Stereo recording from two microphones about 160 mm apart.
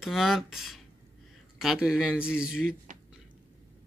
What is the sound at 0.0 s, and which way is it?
Speech, centre (ahead or behind).